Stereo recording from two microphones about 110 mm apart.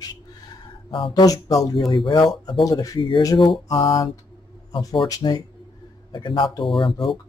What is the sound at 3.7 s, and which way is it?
Speech, 45° left (ahead or behind).